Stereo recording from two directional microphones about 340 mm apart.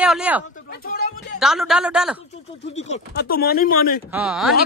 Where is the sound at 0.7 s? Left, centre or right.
Left.